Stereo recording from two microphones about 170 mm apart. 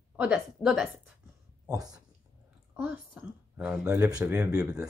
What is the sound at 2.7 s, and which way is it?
Speech, 10° right (ahead or behind).